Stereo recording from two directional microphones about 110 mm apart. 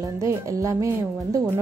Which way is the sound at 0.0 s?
30° right (ahead or behind).